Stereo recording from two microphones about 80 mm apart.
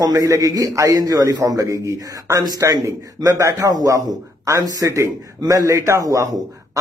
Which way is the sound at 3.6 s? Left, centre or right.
Right.